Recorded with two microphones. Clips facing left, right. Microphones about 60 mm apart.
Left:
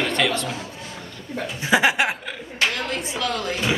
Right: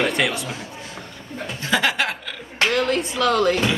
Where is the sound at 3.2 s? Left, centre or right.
Right.